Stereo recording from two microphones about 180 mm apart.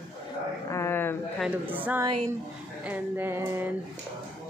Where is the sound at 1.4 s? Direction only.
10° right (ahead or behind).